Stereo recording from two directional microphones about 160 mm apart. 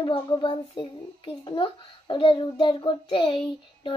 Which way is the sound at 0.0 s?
30° left (ahead or behind).